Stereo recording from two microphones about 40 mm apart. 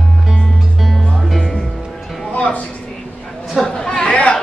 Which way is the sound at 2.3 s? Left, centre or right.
Left.